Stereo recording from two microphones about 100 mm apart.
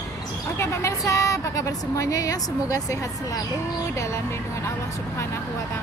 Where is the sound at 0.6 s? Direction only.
30° left (ahead or behind).